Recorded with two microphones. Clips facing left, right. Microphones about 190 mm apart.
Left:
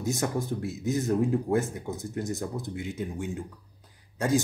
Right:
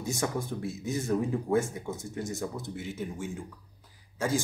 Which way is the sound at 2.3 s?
15° left (ahead or behind).